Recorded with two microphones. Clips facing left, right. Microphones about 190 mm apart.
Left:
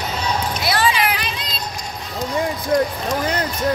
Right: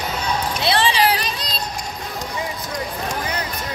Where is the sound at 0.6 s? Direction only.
25° right (ahead or behind).